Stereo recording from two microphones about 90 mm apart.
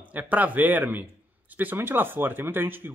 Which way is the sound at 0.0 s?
20° right (ahead or behind).